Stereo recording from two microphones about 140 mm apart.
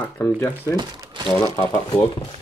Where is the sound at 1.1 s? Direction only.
35° right (ahead or behind).